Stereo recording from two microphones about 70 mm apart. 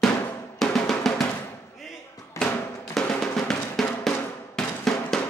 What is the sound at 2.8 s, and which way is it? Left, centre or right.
Drum, centre.